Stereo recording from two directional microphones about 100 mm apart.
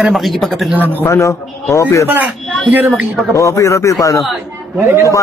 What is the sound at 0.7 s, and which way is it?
Speech, 20° right (ahead or behind).